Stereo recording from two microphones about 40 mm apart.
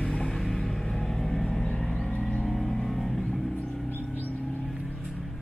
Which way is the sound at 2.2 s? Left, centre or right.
Centre.